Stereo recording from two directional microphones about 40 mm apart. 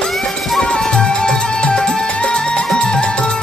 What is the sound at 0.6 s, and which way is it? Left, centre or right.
Music, centre.